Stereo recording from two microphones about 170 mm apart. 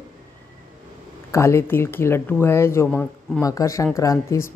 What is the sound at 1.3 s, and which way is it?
Speech, 15° left (ahead or behind).